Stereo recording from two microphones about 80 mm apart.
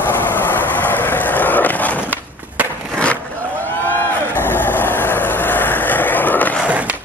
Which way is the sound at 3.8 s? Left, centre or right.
Left.